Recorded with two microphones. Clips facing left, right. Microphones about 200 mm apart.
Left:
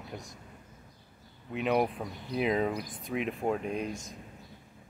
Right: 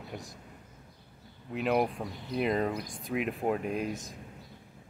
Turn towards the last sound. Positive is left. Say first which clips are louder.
# right 1 dB
turn(degrees=0)  # may be behind; listen again after turning